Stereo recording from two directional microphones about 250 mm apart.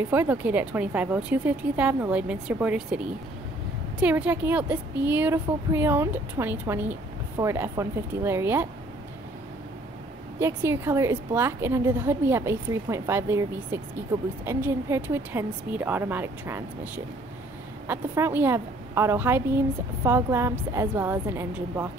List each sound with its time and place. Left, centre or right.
0.1 s a woman's voice: centre
10.4 s speech: centre